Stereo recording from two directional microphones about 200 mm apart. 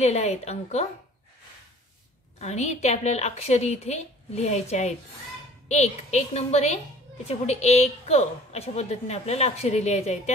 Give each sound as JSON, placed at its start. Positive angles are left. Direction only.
{"t": 0.0, "sound": "a woman's voice", "side_deg": 35}
{"t": 2.3, "sound": "a woman's voice", "side_deg": 35}